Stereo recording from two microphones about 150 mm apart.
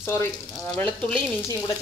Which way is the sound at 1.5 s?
20° left (ahead or behind).